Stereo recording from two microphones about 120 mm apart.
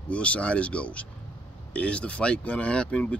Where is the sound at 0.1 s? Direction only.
10° left (ahead or behind).